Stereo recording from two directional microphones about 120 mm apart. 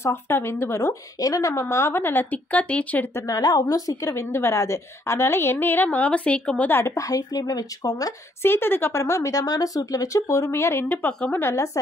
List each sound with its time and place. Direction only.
0.0 s a woman's voice: 20° left (ahead or behind)
3.3 s a woman's voice: 30° left (ahead or behind); by 11.4 s 10° left (ahead or behind)
11.4 s a woman's voice: 25° left (ahead or behind)